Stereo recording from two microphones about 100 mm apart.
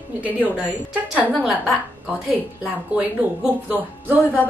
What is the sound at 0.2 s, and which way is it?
A woman's voice, 15° right (ahead or behind).